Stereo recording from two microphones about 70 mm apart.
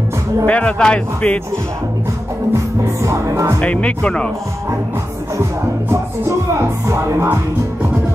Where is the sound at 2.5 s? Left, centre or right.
Right.